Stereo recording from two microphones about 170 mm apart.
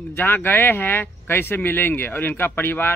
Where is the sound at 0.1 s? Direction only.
15° left (ahead or behind).